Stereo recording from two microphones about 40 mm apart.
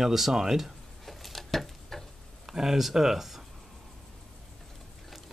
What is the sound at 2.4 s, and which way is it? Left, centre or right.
Speech, centre.